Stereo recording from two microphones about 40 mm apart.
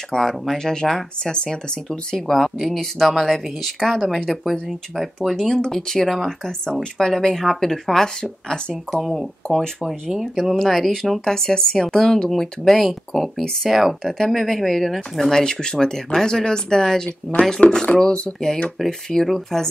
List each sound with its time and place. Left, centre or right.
0.1 s speech: centre
2.8 s speech: centre
5.3 s speech: centre
8.9 s speech: centre
10.4 s speech: centre
14.0 s speech: centre
19.2 s speech: centre